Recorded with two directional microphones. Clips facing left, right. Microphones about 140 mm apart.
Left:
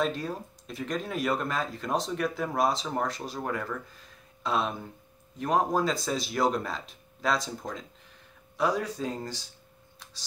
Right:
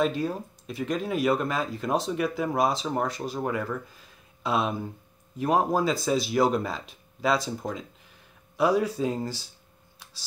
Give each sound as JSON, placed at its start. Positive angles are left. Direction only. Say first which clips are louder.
{"t": 0.0, "sound": "speech", "louder": "right 4 dB", "side_deg": -5}